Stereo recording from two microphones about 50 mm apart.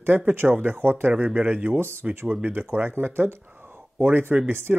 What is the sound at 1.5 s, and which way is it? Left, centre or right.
Speech, right.